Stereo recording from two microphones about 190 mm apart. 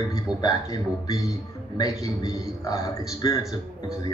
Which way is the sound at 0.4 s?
20° left (ahead or behind).